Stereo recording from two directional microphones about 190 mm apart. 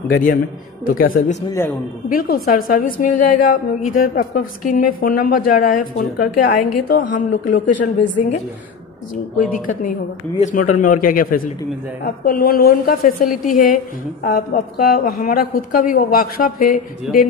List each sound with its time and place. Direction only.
0.8 s a woman's voice: 50° left (ahead or behind)
9.4 s a woman's voice: 45° left (ahead or behind)